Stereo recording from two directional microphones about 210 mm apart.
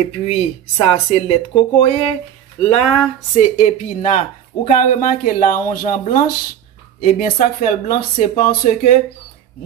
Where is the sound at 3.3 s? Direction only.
35° left (ahead or behind).